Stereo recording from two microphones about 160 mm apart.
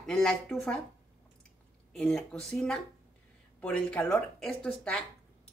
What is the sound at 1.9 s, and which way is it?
A woman's voice, 5° left (ahead or behind).